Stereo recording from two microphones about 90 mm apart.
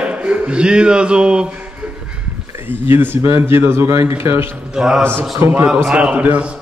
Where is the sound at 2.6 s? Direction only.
25° right (ahead or behind).